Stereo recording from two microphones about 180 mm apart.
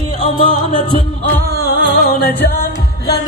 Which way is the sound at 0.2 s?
45° left (ahead or behind).